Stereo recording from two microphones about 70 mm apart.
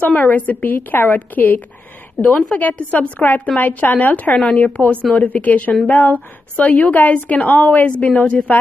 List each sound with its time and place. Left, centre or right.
0.0 s a woman's voice: left
2.2 s a woman's voice: centre